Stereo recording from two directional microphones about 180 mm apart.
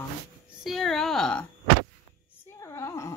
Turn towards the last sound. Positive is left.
turn(degrees=15)  # may be behind; listen again after turning